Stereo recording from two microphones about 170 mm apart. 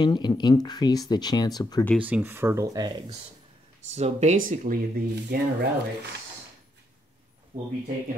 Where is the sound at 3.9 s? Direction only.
40° right (ahead or behind).